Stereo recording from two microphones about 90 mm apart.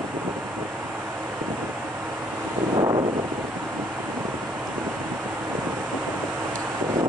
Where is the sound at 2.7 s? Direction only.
50° right (ahead or behind).